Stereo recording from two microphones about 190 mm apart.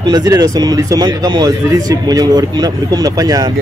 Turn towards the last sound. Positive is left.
turn(degrees=-20)  # may be behind; listen again after turning